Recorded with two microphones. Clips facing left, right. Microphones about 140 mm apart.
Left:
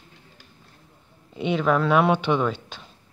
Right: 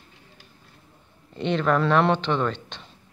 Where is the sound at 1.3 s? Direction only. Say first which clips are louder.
Left 1 dB; 10° left (ahead or behind).